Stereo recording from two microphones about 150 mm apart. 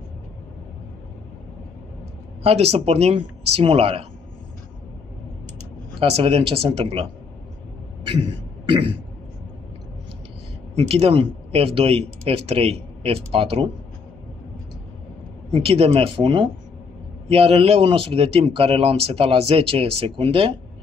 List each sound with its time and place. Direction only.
2.4 s speech: 45° right (ahead or behind)
5.9 s speech: 40° right (ahead or behind)
8.6 s throat clearing: 35° right (ahead or behind)
10.8 s speech: 40° right (ahead or behind)
15.5 s speech: 40° right (ahead or behind)